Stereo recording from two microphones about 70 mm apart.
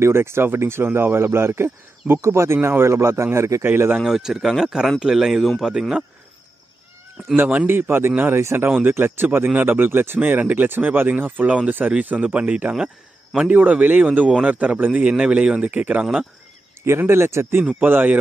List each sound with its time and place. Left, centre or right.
0.0 s speech: right
3.6 s speech: right
4.0 s speech: centre
7.6 s speech: right
8.6 s speech: right
13.5 s speech: right
17.0 s speech: right